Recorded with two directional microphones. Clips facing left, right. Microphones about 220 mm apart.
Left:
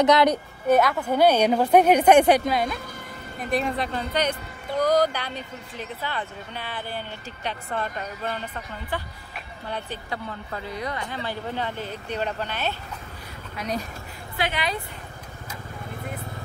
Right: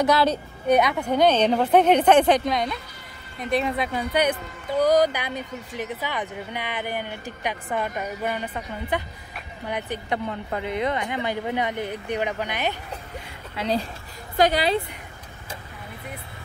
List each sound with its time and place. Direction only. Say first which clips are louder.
0.0 s speech: left 2 dB; 20° left (ahead or behind)
1.0 s a woman's voice: even; 5° left (ahead or behind); by 12.7 s 15° right (ahead or behind)
13.6 s a woman's voice: right 4 dB; 30° right (ahead or behind)
14.3 s speech: right 8 dB; 40° right (ahead or behind)